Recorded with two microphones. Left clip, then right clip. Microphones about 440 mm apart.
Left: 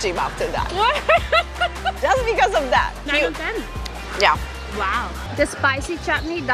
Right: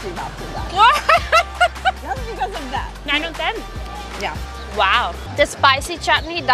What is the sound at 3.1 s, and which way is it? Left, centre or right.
Speech, right.